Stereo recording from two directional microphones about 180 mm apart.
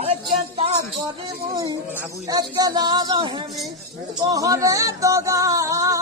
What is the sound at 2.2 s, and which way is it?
Speech, 20° right (ahead or behind).